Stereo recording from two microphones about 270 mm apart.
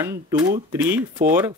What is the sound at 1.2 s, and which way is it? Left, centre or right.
Speech, right.